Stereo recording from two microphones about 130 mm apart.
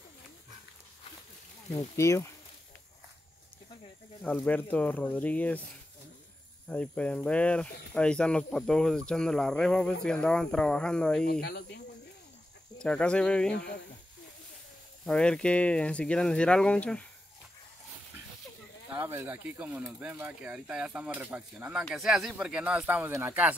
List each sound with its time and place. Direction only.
1.7 s speech: 20° left (ahead or behind)
4.2 s speech: 15° left (ahead or behind)
6.7 s speech: 10° left (ahead or behind)
12.7 s speech: 5° left (ahead or behind)
15.0 s speech: 5° left (ahead or behind)
18.9 s speech: 15° right (ahead or behind)